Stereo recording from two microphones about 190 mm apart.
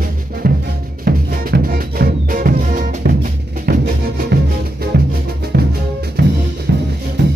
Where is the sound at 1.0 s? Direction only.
50° right (ahead or behind).